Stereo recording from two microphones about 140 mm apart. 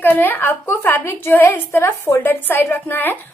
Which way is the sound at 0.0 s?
15° left (ahead or behind).